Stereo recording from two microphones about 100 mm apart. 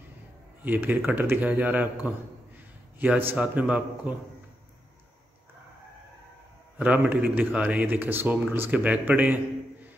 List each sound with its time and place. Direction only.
0.7 s a man's voice: 15° right (ahead or behind)
6.8 s a man's voice: 15° right (ahead or behind)